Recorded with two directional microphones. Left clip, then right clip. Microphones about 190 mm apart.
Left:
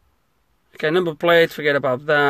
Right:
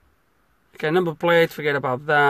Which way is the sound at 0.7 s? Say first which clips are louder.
Left 2 dB; centre (ahead or behind).